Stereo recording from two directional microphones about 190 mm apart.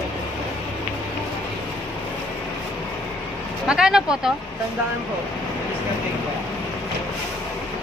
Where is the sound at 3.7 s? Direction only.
5° right (ahead or behind).